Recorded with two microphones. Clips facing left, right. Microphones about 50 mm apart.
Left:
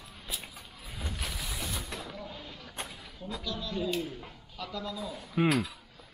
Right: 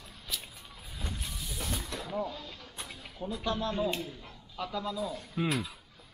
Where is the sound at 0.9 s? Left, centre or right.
Centre.